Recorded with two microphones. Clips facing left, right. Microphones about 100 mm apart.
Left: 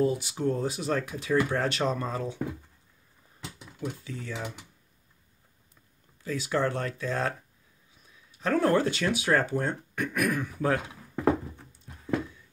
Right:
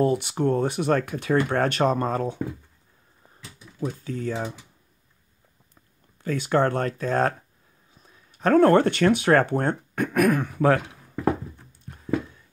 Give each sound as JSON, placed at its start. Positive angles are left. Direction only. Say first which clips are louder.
{"t": 0.0, "sound": "speech", "louder": "right 4 dB", "side_deg": -60}
{"t": 3.8, "sound": "speech", "louder": "right 7 dB", "side_deg": -45}
{"t": 6.2, "sound": "speech", "louder": "right 6 dB", "side_deg": -55}